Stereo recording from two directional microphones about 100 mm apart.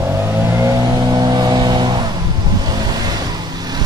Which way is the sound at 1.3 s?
45° right (ahead or behind).